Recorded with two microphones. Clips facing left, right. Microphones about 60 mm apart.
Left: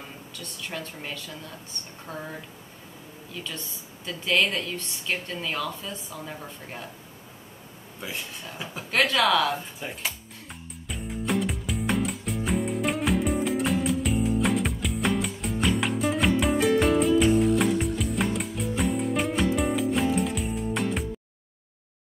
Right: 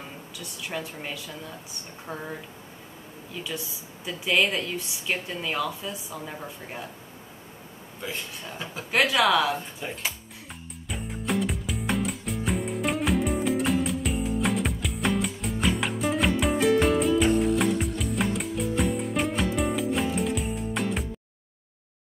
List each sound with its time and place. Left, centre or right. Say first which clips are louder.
0.4 s speech: right 2 dB; centre
3.3 s speech: right 3 dB; centre
8.0 s a sound: right 1 dB; centre